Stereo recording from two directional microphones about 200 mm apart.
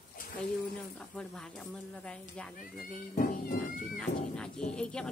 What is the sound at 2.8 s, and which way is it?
Music, 45° left (ahead or behind).